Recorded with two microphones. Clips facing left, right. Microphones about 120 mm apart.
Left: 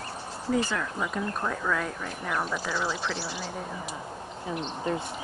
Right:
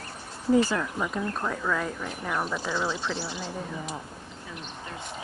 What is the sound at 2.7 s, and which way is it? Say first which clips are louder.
Speech: right 1 dB; 20° right (ahead or behind).